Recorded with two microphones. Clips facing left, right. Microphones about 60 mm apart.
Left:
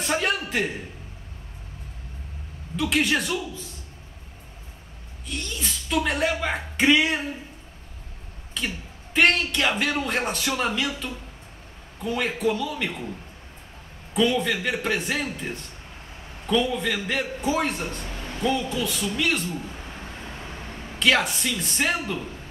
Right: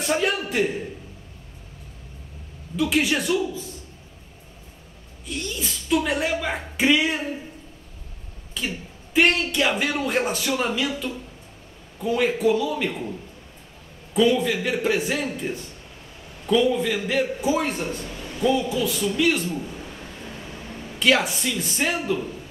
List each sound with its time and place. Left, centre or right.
0.0 s a sound: centre
2.8 s a man's voice: centre
5.3 s a man's voice: centre
8.5 s a man's voice: centre
14.1 s a man's voice: centre
18.1 s a sound: left
18.4 s a man's voice: centre
19.8 s vehicle: left
21.0 s a man's voice: centre